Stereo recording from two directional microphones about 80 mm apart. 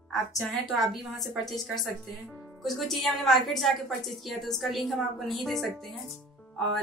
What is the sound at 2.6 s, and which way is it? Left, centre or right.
A woman's voice, centre.